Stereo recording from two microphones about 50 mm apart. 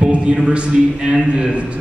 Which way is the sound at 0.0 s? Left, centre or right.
Right.